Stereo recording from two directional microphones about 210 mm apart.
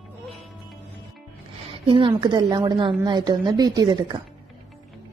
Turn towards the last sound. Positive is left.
turn(degrees=-20)  # may be behind; listen again after turning